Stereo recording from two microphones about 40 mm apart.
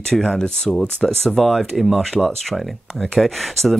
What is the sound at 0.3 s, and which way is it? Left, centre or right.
Speech, centre.